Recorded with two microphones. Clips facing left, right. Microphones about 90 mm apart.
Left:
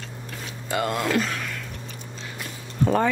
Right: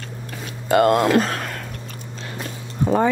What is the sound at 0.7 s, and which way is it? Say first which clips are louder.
Speech: right 10 dB; 55° right (ahead or behind).